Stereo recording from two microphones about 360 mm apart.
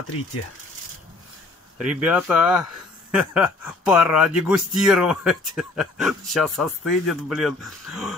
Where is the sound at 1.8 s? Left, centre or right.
Centre.